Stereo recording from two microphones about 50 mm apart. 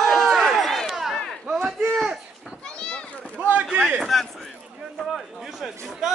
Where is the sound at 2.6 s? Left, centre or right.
Centre.